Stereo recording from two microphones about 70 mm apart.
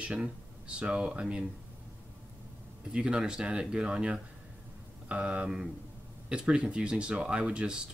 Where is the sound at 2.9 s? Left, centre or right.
Centre.